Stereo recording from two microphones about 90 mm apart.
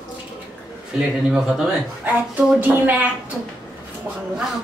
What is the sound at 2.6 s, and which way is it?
Speech, 20° right (ahead or behind).